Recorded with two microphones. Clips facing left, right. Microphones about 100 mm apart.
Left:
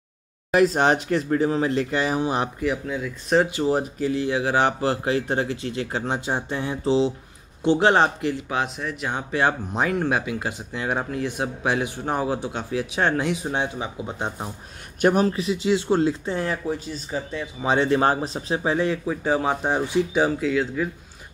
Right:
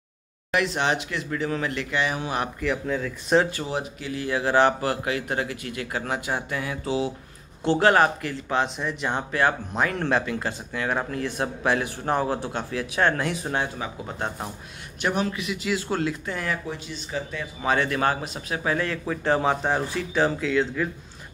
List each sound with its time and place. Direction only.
0.5 s speech: 40° left (ahead or behind)
2.6 s speech: 5° left (ahead or behind)
3.6 s speech: 35° left (ahead or behind)
4.3 s speech: 15° left (ahead or behind)
5.0 s a man's voice: 30° left (ahead or behind)
8.5 s speech: 5° left (ahead or behind)
9.3 s a man's voice: 20° left (ahead or behind)
15.0 s a man's voice: 40° left (ahead or behind); by 20.2 s 15° left (ahead or behind)
20.2 s speech: 5° left (ahead or behind)